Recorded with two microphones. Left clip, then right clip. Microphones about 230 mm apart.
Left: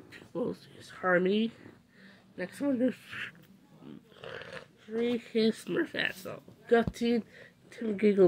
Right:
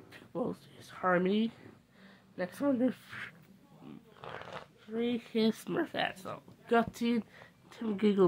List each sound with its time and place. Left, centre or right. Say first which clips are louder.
0.1 s speech: left 2 dB; centre